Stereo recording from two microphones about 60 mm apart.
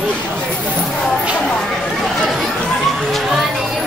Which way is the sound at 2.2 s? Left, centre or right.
Centre.